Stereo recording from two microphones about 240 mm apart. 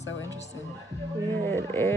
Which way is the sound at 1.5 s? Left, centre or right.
Centre.